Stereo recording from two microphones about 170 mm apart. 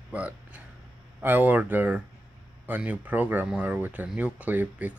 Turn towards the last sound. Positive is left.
turn(degrees=-10)  # may be behind; listen again after turning